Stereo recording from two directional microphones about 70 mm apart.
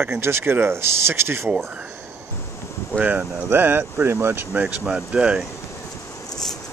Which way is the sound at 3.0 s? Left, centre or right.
Right.